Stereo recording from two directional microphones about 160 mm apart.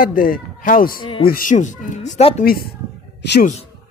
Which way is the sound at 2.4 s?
65° left (ahead or behind).